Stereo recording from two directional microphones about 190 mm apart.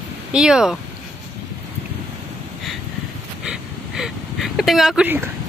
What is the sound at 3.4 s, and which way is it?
Gasp, 5° right (ahead or behind).